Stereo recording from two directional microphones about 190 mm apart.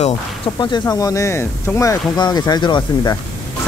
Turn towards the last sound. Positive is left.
turn(degrees=20)  # may be behind; listen again after turning